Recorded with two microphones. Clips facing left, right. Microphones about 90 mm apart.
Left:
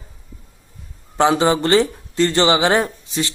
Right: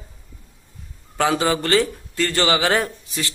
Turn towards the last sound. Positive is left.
turn(degrees=25)  # may be behind; listen again after turning